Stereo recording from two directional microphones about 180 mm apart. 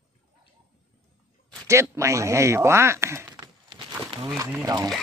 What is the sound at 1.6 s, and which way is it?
Speech, 15° right (ahead or behind).